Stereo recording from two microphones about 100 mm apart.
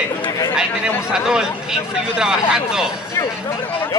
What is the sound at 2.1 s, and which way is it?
Speech, 5° right (ahead or behind).